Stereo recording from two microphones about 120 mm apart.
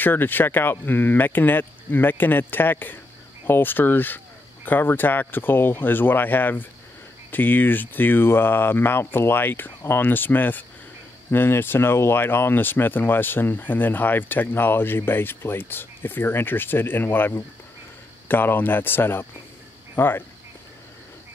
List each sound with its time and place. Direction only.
0.0 s speech: 15° left (ahead or behind)